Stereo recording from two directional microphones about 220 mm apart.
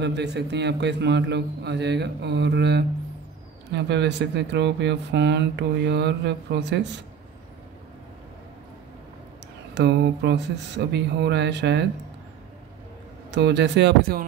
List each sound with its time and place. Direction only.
0.0 s speech: 50° right (ahead or behind)
9.8 s speech: 50° right (ahead or behind)
13.3 s speech: 50° right (ahead or behind)